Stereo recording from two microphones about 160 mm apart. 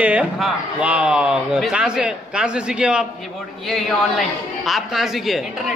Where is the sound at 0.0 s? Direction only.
5° right (ahead or behind).